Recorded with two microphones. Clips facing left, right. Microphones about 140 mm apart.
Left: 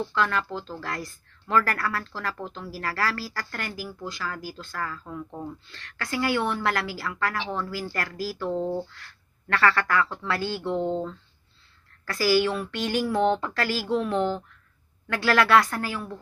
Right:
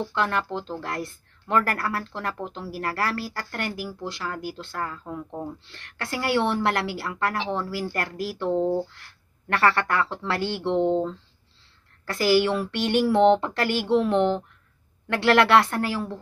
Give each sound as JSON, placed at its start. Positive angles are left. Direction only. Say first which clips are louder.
{"t": 0.1, "sound": "speech", "louder": "right 1 dB", "side_deg": -25}